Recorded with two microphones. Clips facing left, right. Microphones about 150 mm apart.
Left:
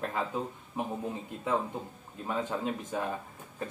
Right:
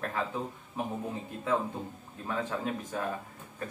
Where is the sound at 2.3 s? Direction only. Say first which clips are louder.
Left 1 dB; 20° left (ahead or behind).